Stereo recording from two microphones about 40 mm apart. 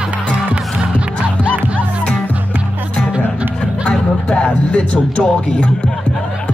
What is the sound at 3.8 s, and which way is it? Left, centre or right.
Vehicle, left.